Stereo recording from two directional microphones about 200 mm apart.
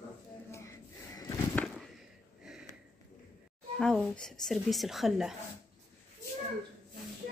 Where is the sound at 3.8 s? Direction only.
5° left (ahead or behind).